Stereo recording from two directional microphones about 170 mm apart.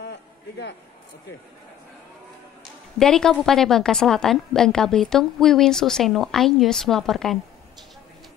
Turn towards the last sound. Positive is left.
turn(degrees=0)  # may be behind; listen again after turning